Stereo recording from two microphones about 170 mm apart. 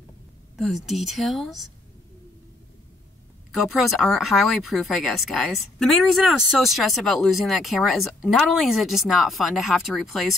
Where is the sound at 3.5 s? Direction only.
Centre (ahead or behind).